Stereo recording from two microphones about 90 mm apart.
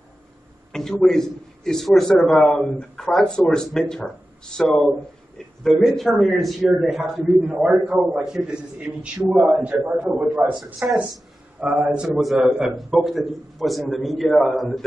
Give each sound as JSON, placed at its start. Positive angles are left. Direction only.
{"t": 0.7, "sound": "a man's voice", "side_deg": 5}
{"t": 7.5, "sound": "a man's voice", "side_deg": -15}
{"t": 8.2, "sound": "a man's voice", "side_deg": -5}
{"t": 10.5, "sound": "a man's voice", "side_deg": 0}